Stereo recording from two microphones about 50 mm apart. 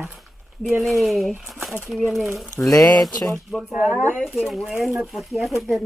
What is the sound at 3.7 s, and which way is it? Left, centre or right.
Speech, right.